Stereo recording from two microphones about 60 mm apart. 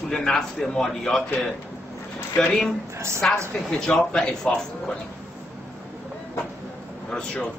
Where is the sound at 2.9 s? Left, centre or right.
Right.